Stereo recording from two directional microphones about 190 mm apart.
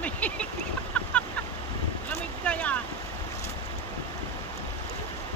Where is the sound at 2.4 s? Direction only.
5° left (ahead or behind).